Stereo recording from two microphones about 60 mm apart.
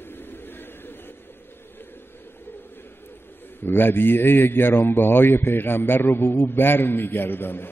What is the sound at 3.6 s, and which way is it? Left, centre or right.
A man's voice, left.